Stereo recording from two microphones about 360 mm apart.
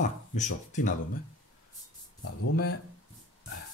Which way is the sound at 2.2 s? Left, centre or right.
Left.